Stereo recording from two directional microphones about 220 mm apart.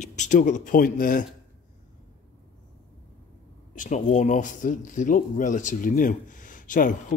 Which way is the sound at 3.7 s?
35° left (ahead or behind).